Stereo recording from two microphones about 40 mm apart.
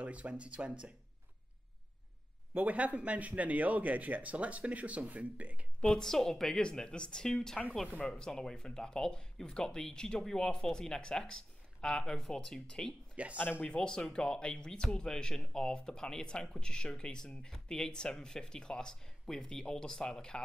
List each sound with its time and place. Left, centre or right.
0.0 s a man's voice: right
2.5 s a man's voice: right
5.8 s speech: centre
7.8 s speech: left
8.3 s speech: centre
13.1 s speech: right
13.4 s speech: left
13.7 s speech: left